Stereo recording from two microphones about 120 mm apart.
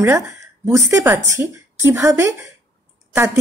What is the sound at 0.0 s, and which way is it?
A woman's voice, 20° right (ahead or behind).